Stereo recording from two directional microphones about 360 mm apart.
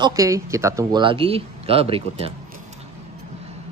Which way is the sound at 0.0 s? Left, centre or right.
Centre.